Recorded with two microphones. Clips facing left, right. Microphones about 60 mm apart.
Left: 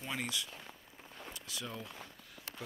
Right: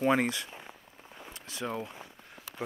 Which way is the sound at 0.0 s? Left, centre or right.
Right.